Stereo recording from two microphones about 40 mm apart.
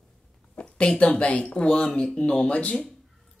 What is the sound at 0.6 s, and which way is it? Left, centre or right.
A woman's voice, left.